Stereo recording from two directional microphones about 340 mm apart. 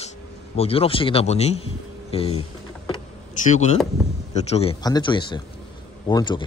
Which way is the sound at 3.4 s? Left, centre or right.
Left.